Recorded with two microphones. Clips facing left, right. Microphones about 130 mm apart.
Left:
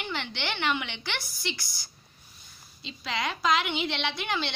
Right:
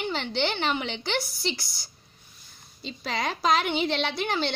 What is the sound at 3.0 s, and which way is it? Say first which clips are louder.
A woman's voice: right 2 dB; 40° right (ahead or behind).